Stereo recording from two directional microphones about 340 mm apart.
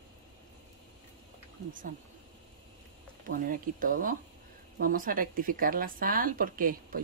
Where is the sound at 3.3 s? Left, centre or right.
Right.